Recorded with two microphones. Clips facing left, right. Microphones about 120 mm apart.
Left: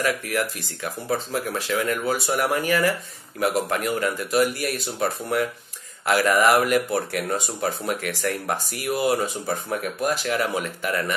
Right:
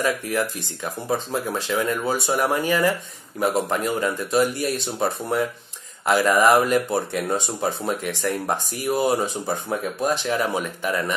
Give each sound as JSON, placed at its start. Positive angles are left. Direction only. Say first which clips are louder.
{"t": 0.0, "sound": "speech", "louder": "right 1 dB", "side_deg": -20}